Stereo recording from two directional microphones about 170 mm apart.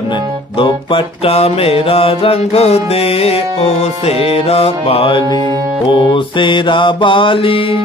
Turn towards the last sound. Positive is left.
turn(degrees=30)  # may be behind; listen again after turning